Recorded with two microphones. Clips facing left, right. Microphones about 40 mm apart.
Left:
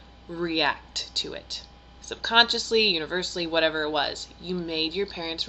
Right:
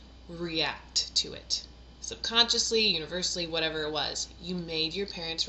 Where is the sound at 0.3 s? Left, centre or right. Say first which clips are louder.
Left 7 dB; left.